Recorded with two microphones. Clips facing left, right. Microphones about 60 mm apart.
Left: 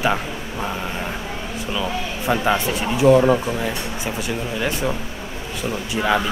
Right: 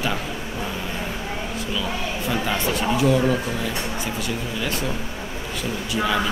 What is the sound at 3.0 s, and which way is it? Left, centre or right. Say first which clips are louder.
Speech: left 8 dB; left.